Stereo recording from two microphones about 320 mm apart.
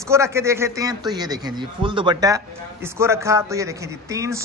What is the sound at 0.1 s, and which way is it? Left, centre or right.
A man's voice, centre.